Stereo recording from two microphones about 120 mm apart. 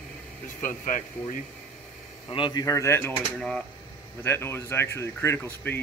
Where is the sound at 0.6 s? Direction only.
90° left.